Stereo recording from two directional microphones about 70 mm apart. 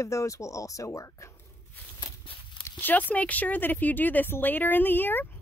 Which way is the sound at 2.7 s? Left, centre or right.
Left.